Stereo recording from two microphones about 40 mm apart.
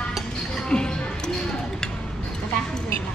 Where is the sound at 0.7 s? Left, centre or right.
Left.